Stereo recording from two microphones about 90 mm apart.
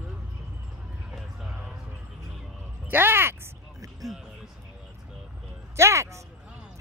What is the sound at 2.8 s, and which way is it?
Speech, 25° right (ahead or behind).